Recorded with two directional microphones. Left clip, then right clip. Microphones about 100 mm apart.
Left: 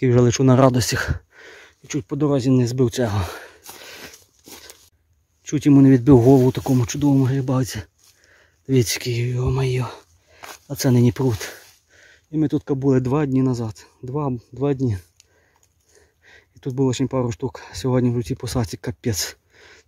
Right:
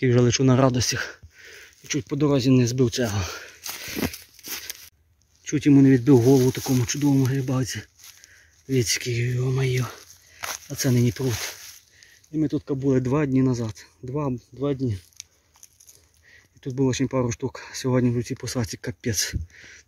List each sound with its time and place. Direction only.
0.0 s speech: 45° left (ahead or behind)
1.9 s speech: 20° left (ahead or behind)
2.9 s speech: 50° left (ahead or behind)
4.5 s a sound: 20° left (ahead or behind)
5.4 s speech: 35° left (ahead or behind)
8.6 s speech: 55° left (ahead or behind)
10.7 s speech: 60° left (ahead or behind)
12.3 s speech: 90° left
13.0 s speech: 35° left (ahead or behind)
14.6 s speech: 90° left
15.2 s a sound: 20° right (ahead or behind)
16.7 s speech: 35° left (ahead or behind)